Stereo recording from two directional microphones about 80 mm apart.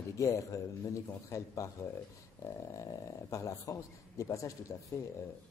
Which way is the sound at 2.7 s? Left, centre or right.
Left.